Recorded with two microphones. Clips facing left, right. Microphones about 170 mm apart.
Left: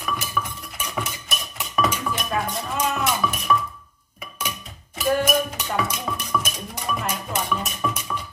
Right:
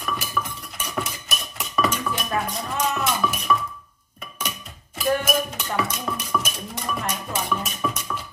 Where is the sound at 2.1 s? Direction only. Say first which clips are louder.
Even; centre (ahead or behind).